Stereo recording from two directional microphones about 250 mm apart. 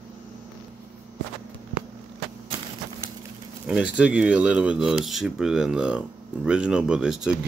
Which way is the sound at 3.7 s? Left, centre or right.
Centre.